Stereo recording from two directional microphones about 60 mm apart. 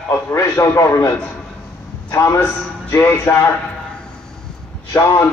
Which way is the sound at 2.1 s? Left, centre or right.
Left.